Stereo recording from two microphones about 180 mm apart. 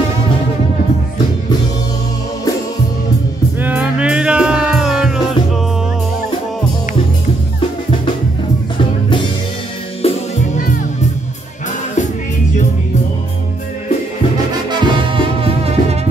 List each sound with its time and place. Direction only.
3.6 s music: 10° right (ahead or behind)
10.0 s music: 35° left (ahead or behind)
14.7 s music: 25° right (ahead or behind)